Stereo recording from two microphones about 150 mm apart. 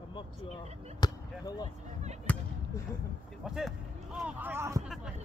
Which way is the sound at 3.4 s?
5° right (ahead or behind).